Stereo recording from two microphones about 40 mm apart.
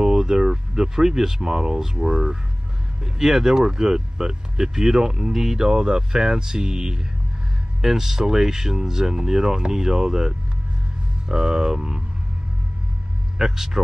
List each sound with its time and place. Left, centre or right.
0.0 s speech: centre
3.0 s speech: centre
13.4 s speech: centre